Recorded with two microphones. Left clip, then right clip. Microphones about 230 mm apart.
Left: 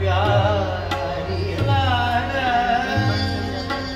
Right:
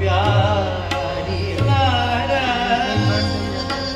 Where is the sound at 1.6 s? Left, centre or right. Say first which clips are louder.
Right 2 dB; right.